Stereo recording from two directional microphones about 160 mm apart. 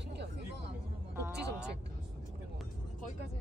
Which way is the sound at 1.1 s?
15° right (ahead or behind).